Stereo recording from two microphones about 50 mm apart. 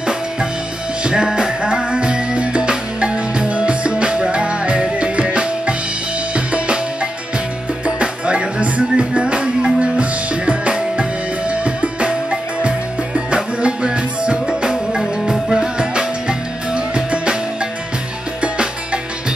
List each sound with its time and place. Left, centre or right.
1.0 s music: centre
18.4 s music: right